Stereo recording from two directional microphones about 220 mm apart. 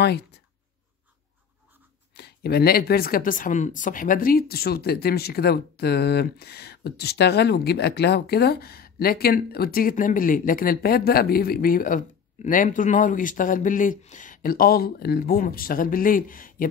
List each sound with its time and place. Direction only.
2.1 s speech: 45° left (ahead or behind)